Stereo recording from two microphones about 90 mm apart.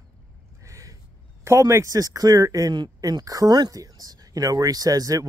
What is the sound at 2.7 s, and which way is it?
Speech, 50° right (ahead or behind).